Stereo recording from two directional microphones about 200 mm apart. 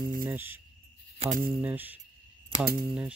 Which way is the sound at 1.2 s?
40° right (ahead or behind).